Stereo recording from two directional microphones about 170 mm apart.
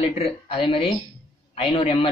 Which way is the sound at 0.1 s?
35° left (ahead or behind).